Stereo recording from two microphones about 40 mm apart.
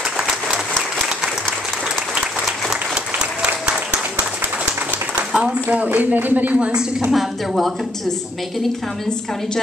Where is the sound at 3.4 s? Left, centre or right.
Right.